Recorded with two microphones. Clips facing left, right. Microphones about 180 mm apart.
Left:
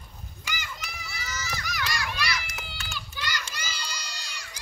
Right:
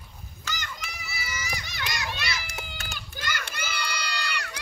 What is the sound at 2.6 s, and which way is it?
Crowd, 45° right (ahead or behind).